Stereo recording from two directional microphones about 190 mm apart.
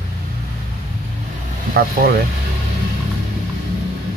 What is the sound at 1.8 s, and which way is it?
Speech, 55° right (ahead or behind).